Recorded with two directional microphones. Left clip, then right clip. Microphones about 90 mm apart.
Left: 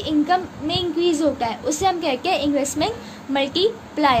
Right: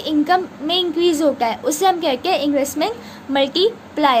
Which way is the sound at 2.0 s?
20° right (ahead or behind).